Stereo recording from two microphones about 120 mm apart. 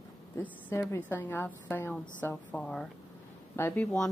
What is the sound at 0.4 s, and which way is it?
Speech, 20° left (ahead or behind).